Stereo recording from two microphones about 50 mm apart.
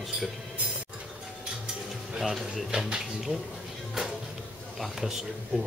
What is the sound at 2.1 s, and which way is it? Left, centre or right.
Speech, centre.